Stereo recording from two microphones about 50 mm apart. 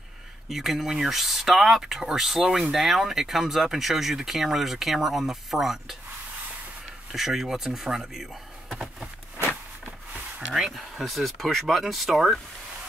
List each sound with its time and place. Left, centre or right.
0.5 s speech: centre
7.2 s speech: centre
10.4 s speech: centre